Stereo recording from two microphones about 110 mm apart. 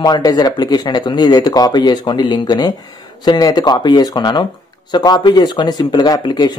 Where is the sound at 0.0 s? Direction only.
35° left (ahead or behind).